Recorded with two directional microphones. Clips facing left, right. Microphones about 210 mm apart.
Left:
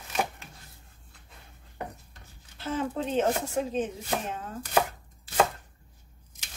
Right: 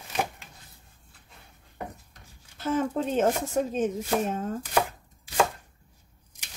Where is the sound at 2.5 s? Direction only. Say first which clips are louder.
Right 4 dB; 45° right (ahead or behind).